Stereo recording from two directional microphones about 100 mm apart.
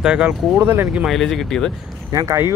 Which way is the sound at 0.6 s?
25° right (ahead or behind).